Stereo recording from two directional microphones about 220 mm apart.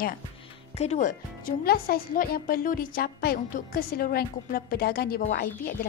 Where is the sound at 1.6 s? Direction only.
45° left (ahead or behind).